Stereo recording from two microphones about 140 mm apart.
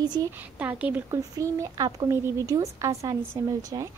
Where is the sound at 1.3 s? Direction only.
25° right (ahead or behind).